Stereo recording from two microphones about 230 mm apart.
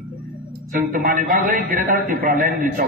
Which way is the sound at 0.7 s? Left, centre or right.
Right.